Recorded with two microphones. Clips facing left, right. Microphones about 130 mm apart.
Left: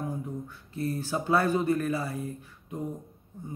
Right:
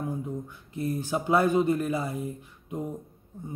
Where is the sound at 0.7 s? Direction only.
15° right (ahead or behind).